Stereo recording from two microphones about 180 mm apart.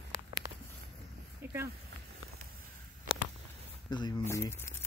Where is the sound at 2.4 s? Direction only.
40° right (ahead or behind).